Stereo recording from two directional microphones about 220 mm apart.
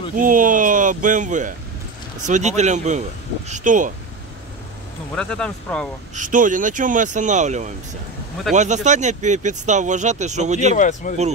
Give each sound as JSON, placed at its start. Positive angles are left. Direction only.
{"t": 0.1, "sound": "speech", "side_deg": -40}
{"t": 5.1, "sound": "speech", "side_deg": 5}
{"t": 6.1, "sound": "speech", "side_deg": -35}
{"t": 10.8, "sound": "speech", "side_deg": 35}